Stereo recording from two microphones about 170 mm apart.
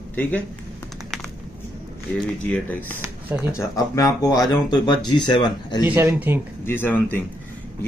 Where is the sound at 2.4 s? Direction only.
10° left (ahead or behind).